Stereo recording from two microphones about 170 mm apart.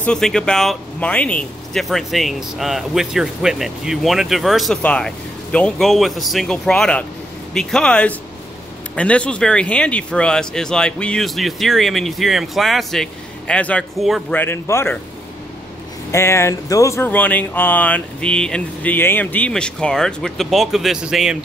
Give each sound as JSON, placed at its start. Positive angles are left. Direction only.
{"t": 0.0, "sound": "speech", "side_deg": 5}
{"t": 14.3, "sound": "speech", "side_deg": 10}
{"t": 16.1, "sound": "speech", "side_deg": 15}